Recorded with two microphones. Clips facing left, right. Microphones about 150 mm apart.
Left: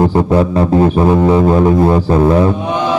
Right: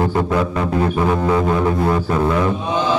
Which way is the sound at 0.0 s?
35° left (ahead or behind).